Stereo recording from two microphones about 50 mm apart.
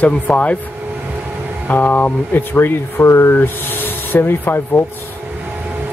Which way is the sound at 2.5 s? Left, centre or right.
Left.